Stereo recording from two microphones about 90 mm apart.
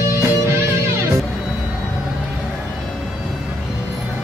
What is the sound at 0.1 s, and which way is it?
Music, 30° right (ahead or behind).